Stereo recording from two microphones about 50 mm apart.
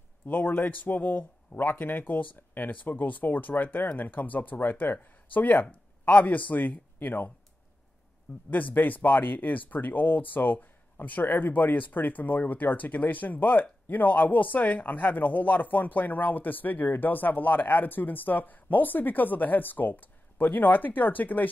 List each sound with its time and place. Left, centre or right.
0.3 s speech: left
8.5 s speech: left